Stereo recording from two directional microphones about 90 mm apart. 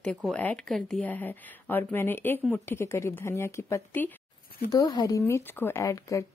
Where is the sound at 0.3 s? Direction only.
15° left (ahead or behind).